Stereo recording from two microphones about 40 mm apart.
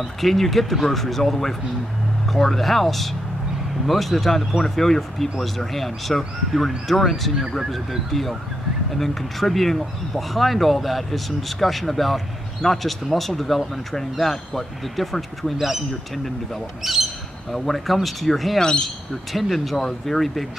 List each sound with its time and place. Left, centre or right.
0.0 s speech: centre
16.8 s speech: centre
18.6 s speech: centre
19.3 s speech: centre